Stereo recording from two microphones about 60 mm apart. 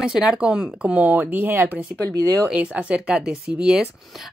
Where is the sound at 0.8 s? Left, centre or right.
Right.